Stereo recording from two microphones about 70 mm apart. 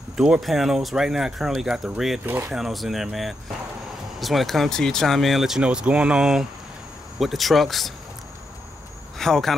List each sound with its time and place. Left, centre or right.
0.2 s speech: centre
2.2 s speech: right
2.5 s speech: centre
5.6 s speech: centre
7.2 s speech: centre
9.2 s speech: centre